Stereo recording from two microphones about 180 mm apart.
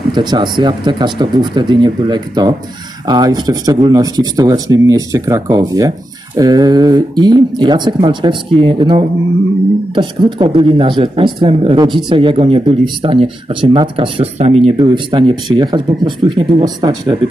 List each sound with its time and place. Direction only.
0.1 s speech: 25° right (ahead or behind)